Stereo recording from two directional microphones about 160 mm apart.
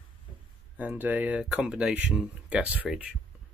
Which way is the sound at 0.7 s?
10° right (ahead or behind).